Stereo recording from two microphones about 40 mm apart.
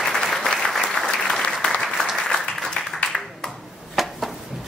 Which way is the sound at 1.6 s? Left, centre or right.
Left.